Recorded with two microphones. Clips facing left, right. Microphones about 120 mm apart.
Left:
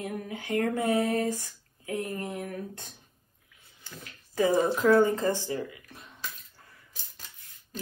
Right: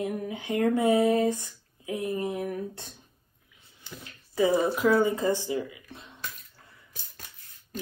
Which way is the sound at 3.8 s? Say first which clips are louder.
Right 2 dB; 15° right (ahead or behind).